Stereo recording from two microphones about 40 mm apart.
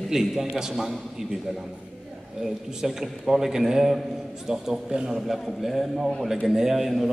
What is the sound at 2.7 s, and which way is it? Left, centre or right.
A man's voice, centre.